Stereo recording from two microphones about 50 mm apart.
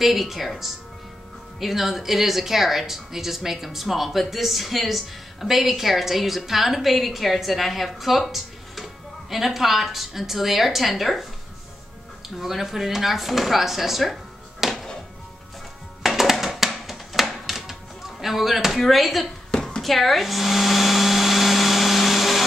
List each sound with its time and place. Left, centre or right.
0.0 s speech: centre
12.4 s speech: centre
14.6 s music: centre
16.2 s music: centre
18.2 s speech: centre
19.8 s blender: centre